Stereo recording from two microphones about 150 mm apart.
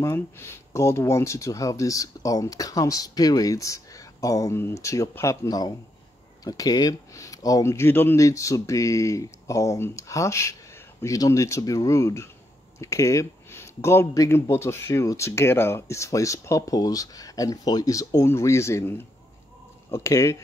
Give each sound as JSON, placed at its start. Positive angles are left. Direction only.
{"t": 0.0, "sound": "speech", "side_deg": 15}